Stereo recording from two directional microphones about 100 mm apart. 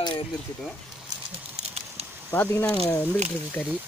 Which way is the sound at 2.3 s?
20° left (ahead or behind).